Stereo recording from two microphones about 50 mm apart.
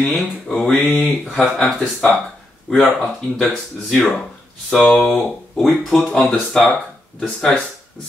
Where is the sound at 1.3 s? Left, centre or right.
Centre.